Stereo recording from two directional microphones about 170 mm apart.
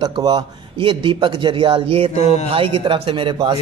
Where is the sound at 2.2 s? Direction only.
40° left (ahead or behind).